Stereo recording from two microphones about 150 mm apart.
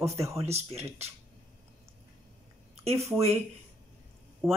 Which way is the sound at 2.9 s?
20° right (ahead or behind).